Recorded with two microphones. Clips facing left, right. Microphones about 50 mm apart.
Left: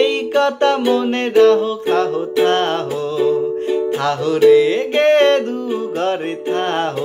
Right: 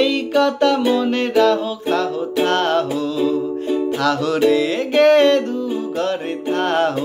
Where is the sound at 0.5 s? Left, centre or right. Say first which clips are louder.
Left 1 dB; left.